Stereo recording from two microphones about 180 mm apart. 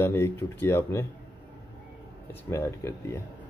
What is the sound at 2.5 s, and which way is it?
Speech, 15° left (ahead or behind).